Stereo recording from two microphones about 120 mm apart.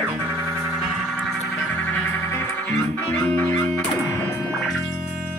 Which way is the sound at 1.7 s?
20° left (ahead or behind).